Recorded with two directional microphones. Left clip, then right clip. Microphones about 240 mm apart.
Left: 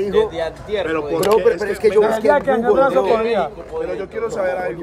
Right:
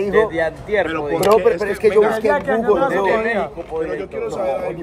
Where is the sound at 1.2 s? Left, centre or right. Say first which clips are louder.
Right 1 dB; centre.